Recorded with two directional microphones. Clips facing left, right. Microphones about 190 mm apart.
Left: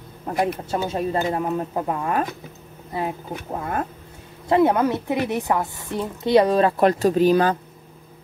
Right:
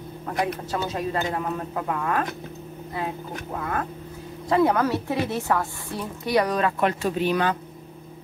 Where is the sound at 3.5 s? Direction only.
25° left (ahead or behind).